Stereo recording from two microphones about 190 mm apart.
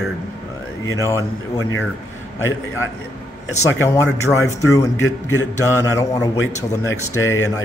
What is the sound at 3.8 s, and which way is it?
Speech, 15° left (ahead or behind).